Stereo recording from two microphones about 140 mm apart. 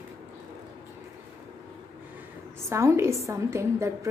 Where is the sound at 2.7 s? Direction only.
20° right (ahead or behind).